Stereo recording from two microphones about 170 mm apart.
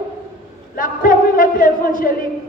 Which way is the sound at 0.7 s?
55° left (ahead or behind).